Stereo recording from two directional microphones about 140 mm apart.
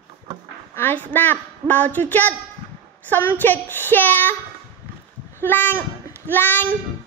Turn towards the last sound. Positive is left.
turn(degrees=15)  # may be behind; listen again after turning